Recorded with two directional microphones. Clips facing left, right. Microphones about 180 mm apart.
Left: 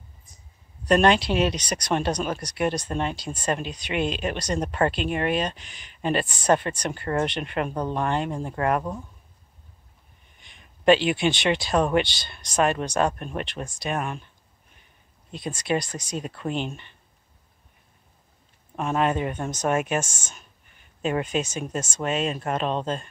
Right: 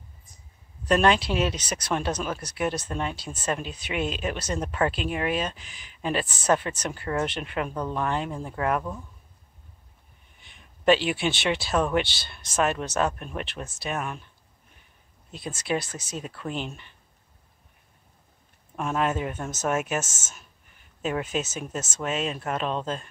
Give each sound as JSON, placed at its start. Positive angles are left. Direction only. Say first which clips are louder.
{"t": 0.8, "sound": "speech", "louder": "left 2 dB", "side_deg": 0}
{"t": 10.4, "sound": "speech", "louder": "left 2 dB", "side_deg": 0}
{"t": 15.3, "sound": "speech", "louder": "left 3 dB", "side_deg": -5}
{"t": 18.8, "sound": "speech", "louder": "left 3 dB", "side_deg": 0}